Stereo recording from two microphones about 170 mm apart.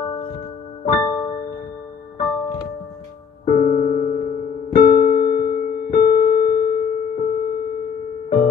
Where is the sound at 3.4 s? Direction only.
40° left (ahead or behind).